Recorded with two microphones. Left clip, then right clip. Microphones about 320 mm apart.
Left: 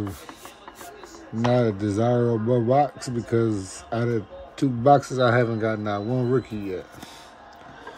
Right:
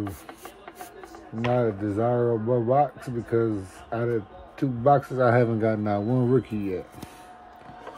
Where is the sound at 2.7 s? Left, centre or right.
Centre.